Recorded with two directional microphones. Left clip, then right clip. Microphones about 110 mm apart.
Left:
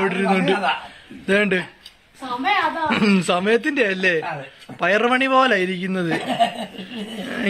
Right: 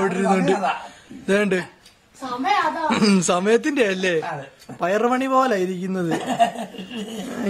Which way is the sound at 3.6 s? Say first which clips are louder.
Left 1 dB; 30° right (ahead or behind).